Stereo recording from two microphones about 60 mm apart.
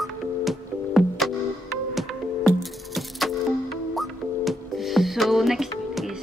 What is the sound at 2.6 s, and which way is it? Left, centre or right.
Music, centre.